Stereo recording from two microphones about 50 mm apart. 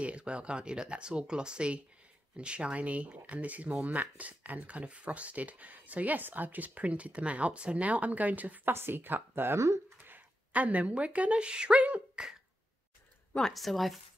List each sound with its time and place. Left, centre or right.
0.0 s speech: right
8.7 s speech: right
10.0 s speech: right
13.4 s speech: centre